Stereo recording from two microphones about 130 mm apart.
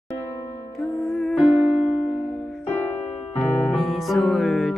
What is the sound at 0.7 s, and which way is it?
Music, centre (ahead or behind).